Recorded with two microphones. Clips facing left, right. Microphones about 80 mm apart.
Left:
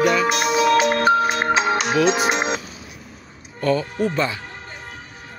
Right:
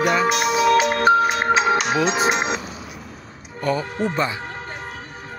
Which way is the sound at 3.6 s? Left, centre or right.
Centre.